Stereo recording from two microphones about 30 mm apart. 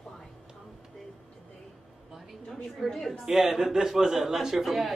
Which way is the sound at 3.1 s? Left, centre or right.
Centre.